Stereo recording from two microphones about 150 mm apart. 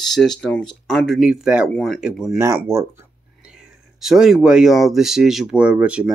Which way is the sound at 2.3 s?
20° right (ahead or behind).